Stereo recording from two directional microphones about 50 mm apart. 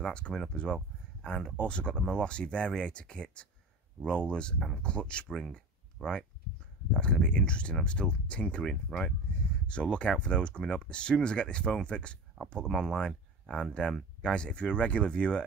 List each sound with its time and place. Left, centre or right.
0.1 s speech: left
8.8 s speech: centre
9.7 s speech: left